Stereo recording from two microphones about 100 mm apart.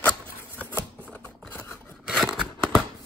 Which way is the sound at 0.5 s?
15° left (ahead or behind).